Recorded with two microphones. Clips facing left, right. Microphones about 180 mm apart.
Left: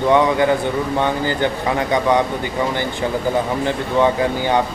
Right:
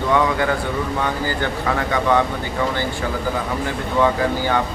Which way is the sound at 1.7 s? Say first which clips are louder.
Left 1 dB; 20° left (ahead or behind).